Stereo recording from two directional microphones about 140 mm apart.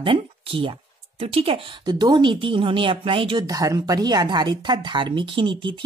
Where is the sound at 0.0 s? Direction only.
40° right (ahead or behind).